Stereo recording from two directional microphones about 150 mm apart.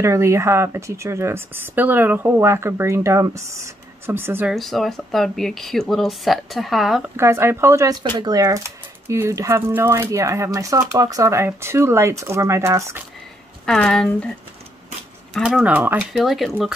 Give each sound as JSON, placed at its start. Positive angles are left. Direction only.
{"t": 0.0, "sound": "speech", "side_deg": -20}
{"t": 4.5, "sound": "speech", "side_deg": 0}
{"t": 7.2, "sound": "speech", "side_deg": -15}
{"t": 13.7, "sound": "speech", "side_deg": 5}
{"t": 15.3, "sound": "speech", "side_deg": 0}